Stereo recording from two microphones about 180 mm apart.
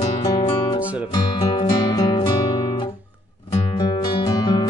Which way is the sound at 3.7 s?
20° left (ahead or behind).